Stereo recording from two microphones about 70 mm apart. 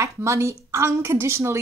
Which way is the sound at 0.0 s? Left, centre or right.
Right.